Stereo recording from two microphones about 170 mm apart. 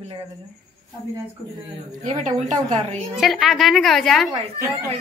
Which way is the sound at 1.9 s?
45° right (ahead or behind).